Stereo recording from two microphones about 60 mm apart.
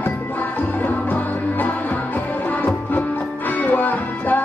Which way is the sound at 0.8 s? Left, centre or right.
Left.